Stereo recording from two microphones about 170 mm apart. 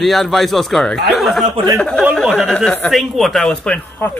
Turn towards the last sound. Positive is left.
turn(degrees=5)  # may be behind; listen again after turning